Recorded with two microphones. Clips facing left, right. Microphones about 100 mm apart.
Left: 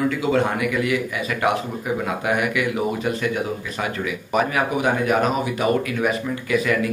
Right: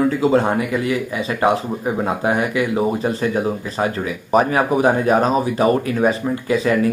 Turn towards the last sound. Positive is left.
turn(degrees=-30)  # may be behind; listen again after turning